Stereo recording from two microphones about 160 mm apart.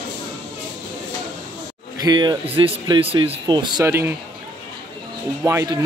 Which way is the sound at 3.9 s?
15° right (ahead or behind).